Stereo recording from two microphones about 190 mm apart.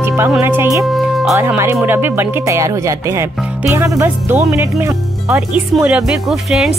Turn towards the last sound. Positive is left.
turn(degrees=0)  # may be behind; listen again after turning